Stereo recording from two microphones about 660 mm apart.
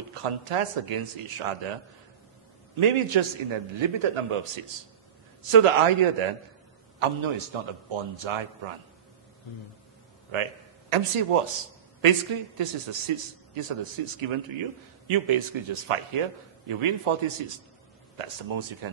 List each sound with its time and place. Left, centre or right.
0.1 s a man's voice: right
2.8 s a man's voice: right
10.3 s a man's voice: right